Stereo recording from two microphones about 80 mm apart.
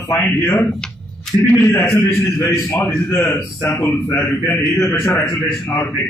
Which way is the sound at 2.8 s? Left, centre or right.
Left.